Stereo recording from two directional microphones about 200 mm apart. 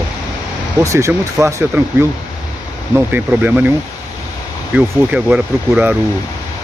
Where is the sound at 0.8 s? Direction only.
15° right (ahead or behind).